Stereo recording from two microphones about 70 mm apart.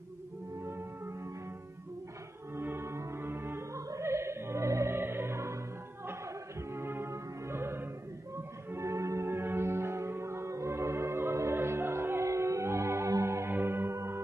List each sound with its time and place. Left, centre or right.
0.7 s music: right
2.5 s music: right
3.7 s music: right
6.7 s music: right